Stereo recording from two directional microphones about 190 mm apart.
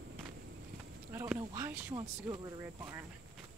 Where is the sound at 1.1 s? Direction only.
10° right (ahead or behind).